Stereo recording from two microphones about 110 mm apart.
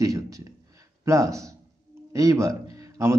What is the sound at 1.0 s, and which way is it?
A man's voice, 30° right (ahead or behind).